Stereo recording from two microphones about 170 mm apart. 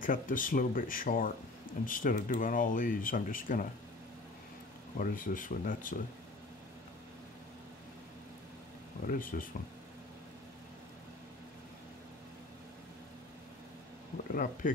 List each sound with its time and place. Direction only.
0.0 s speech: 50° left (ahead or behind)
4.9 s speech: 55° left (ahead or behind)
9.0 s speech: 55° left (ahead or behind)
14.3 s speech: 55° left (ahead or behind)